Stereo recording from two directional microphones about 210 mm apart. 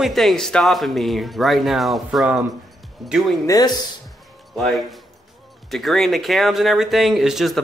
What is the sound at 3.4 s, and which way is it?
Speech, 20° left (ahead or behind).